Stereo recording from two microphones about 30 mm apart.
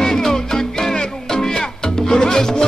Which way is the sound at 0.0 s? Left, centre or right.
Centre.